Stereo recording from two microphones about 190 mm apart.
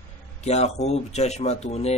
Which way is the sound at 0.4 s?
35° left (ahead or behind).